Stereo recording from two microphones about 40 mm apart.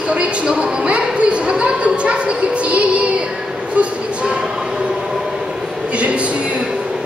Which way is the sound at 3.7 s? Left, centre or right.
Right.